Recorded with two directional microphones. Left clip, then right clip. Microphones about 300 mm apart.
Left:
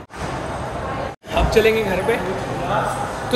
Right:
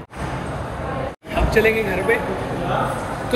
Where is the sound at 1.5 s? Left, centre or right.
Centre.